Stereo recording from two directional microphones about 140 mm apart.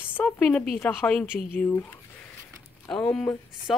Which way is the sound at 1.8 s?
15° left (ahead or behind).